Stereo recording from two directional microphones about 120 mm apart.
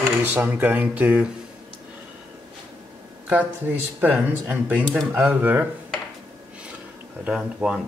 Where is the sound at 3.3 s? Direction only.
15° right (ahead or behind).